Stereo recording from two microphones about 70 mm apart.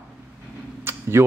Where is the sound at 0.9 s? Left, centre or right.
Right.